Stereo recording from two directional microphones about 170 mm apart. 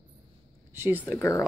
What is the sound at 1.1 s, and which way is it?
Speech, 15° left (ahead or behind).